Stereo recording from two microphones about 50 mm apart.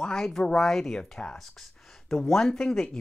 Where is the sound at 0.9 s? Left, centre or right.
Centre.